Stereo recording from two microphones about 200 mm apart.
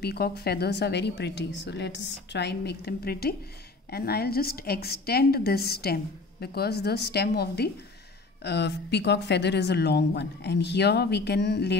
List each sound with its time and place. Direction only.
0.0 s a woman's voice: 50° left (ahead or behind)